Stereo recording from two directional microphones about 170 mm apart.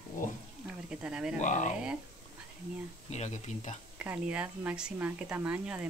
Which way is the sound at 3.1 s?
45° left (ahead or behind).